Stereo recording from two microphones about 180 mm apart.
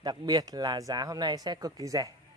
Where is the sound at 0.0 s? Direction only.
20° right (ahead or behind).